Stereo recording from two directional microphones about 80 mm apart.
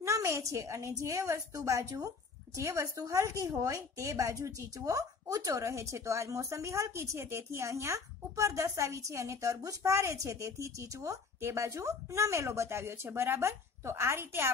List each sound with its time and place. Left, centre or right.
0.0 s a woman's voice: right